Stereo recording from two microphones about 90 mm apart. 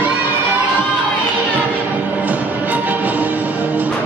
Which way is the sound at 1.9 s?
15° right (ahead or behind).